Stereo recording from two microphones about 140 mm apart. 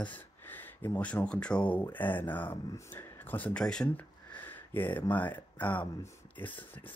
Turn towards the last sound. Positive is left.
turn(degrees=10)  # may be behind; listen again after turning